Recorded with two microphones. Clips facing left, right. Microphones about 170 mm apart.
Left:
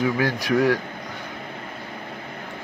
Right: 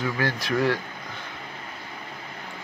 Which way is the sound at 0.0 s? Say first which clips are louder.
Left 5 dB; 15° left (ahead or behind).